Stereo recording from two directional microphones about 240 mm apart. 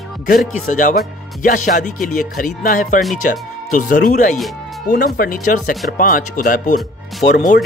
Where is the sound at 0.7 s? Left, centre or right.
Left.